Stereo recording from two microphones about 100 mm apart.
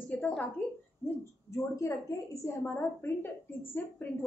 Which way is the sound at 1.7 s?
30° left (ahead or behind).